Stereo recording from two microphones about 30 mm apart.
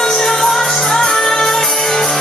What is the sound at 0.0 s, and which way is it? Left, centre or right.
Music, centre.